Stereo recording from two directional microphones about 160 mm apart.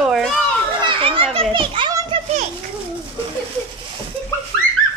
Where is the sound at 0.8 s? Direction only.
35° right (ahead or behind).